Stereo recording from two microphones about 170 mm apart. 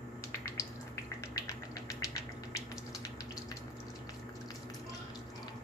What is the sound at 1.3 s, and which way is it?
Finger snapping, 20° left (ahead or behind).